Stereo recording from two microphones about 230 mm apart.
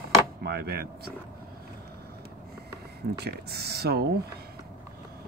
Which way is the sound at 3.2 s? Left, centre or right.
Right.